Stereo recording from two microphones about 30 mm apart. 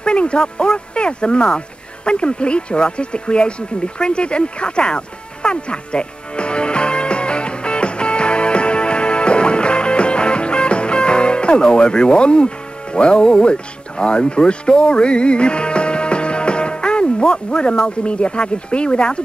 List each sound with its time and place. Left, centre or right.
0.0 s speech: left
2.0 s a sound: left
13.5 s speech: left